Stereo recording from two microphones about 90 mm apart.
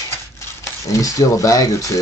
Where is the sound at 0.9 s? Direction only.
40° left (ahead or behind).